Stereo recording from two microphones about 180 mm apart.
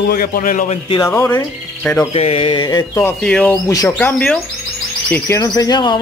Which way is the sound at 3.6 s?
15° left (ahead or behind).